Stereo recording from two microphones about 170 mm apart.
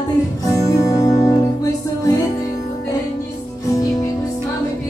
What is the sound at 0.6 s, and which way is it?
Music, 20° left (ahead or behind).